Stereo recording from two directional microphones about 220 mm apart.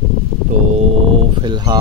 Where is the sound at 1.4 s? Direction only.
20° right (ahead or behind).